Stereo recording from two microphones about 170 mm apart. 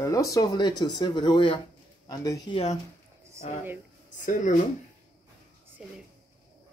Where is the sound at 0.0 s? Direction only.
20° left (ahead or behind); by 2.8 s 35° left (ahead or behind).